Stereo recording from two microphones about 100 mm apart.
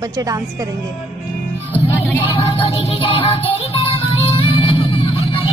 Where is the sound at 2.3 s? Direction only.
60° left (ahead or behind).